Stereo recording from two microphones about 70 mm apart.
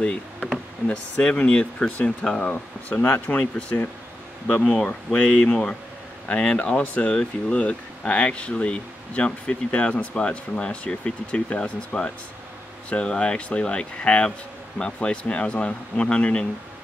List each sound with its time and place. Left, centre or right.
0.0 s speech: centre
2.5 s speech: left